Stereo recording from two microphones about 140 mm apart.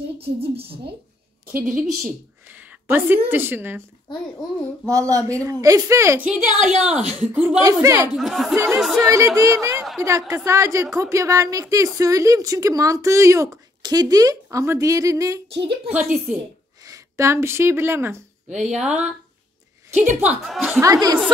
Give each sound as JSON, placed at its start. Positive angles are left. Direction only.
{"t": 0.4, "sound": "a woman's voice", "side_deg": -45}
{"t": 1.5, "sound": "a woman's voice", "side_deg": -15}
{"t": 2.4, "sound": "a sound", "side_deg": -10}
{"t": 3.3, "sound": "a woman's voice", "side_deg": -15}
{"t": 5.1, "sound": "a woman's voice", "side_deg": -25}
{"t": 6.3, "sound": "a woman's voice", "side_deg": -55}
{"t": 7.3, "sound": "a woman's voice", "side_deg": -15}
{"t": 8.2, "sound": "speech", "side_deg": 0}
{"t": 9.0, "sound": "a woman's voice", "side_deg": -20}
{"t": 15.9, "sound": "a woman's voice", "side_deg": -10}
{"t": 16.8, "sound": "a woman's voice", "side_deg": -20}
{"t": 18.7, "sound": "speech", "side_deg": -5}
{"t": 20.2, "sound": "speech", "side_deg": -5}
{"t": 20.8, "sound": "a woman's voice", "side_deg": -25}